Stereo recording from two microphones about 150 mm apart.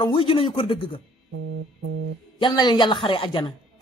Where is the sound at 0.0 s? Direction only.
35° left (ahead or behind).